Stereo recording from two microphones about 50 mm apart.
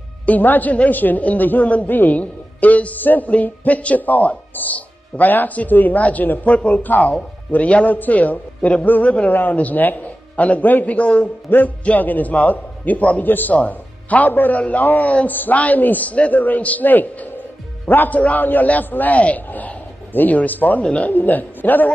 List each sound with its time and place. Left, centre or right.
0.3 s a man's voice: left
11.5 s music: left
11.8 s a man's voice: left
20.8 s speech: left
21.1 s a man's voice: left